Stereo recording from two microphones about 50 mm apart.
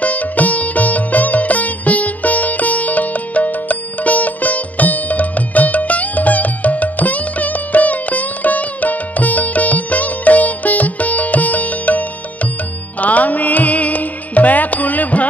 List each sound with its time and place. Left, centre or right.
0.0 s sitar: left
13.0 s music: left